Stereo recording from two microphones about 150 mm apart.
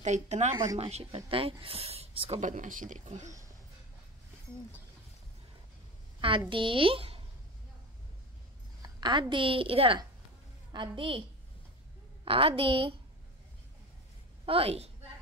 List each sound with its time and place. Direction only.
0.0 s speech: 50° right (ahead or behind)
2.4 s speech: 60° right (ahead or behind)
6.5 s speech: 35° right (ahead or behind)
8.8 s speech: 30° right (ahead or behind)
12.3 s speech: 40° right (ahead or behind)
14.4 s a woman's voice: 40° right (ahead or behind)